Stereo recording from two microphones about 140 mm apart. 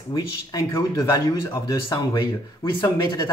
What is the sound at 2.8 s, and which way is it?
Speech, 25° left (ahead or behind).